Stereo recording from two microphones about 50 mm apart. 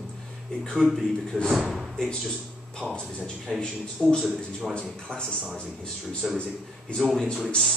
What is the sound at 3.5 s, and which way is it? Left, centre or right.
Speech, centre.